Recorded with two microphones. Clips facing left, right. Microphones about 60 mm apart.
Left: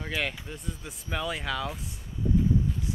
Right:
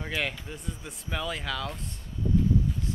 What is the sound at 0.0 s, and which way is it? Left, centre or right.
Speech, centre.